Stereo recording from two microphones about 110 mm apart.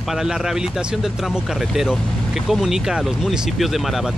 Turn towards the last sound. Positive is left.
turn(degrees=0)  # may be behind; listen again after turning